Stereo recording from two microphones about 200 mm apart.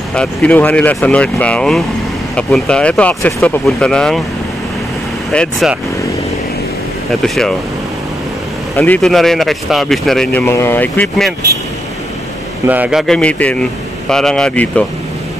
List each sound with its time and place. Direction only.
0.1 s speech: 5° left (ahead or behind)
5.3 s speech: centre (ahead or behind)
7.1 s speech: centre (ahead or behind)
8.7 s speech: 10° left (ahead or behind)
12.6 s speech: 5° right (ahead or behind)